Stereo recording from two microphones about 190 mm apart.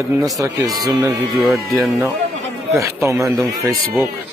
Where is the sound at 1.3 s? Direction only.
Centre (ahead or behind).